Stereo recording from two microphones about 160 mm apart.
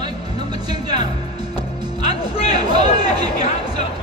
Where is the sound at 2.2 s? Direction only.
35° left (ahead or behind).